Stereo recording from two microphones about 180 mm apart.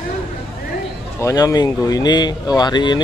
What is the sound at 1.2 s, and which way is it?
Speech, 20° left (ahead or behind).